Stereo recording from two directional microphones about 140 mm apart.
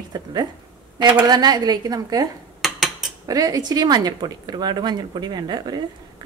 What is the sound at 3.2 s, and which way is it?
A woman's voice, 25° right (ahead or behind).